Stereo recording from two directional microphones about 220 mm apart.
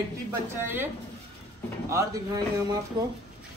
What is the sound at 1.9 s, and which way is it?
Speech, 15° right (ahead or behind).